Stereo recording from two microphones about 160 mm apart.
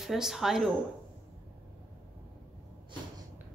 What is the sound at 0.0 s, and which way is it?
Speech, centre (ahead or behind).